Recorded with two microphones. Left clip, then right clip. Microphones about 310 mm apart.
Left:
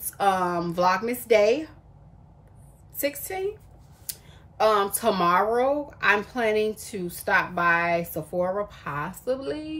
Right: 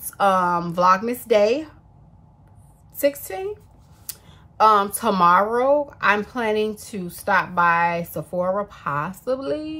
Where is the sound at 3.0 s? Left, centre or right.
Centre.